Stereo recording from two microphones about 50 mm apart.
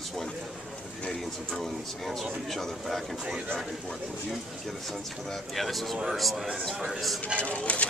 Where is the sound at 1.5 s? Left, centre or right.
Centre.